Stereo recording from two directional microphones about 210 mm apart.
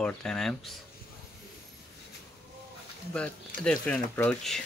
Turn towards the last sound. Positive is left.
turn(degrees=5)  # may be behind; listen again after turning